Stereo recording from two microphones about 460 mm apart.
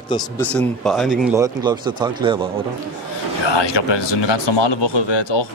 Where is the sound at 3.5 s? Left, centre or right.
Left.